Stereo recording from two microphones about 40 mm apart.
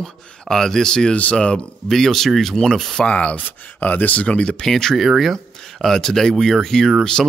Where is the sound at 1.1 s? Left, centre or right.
Left.